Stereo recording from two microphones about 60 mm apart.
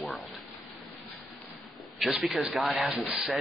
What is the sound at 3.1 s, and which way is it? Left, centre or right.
Speech, centre.